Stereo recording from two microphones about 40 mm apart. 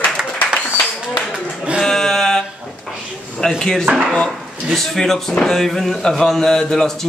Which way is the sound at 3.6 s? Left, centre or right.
Centre.